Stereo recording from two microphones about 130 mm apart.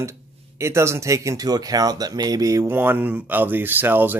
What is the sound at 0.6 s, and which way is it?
Speech, 20° right (ahead or behind).